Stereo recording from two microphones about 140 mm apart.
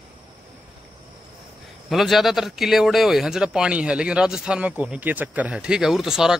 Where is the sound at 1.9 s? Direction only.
Centre (ahead or behind).